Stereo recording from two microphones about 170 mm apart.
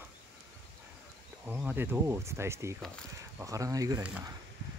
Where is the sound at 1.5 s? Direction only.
10° right (ahead or behind).